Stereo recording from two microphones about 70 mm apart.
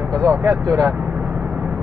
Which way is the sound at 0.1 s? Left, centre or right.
Centre.